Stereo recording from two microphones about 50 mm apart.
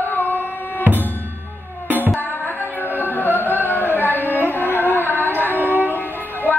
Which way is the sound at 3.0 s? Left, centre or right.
Left.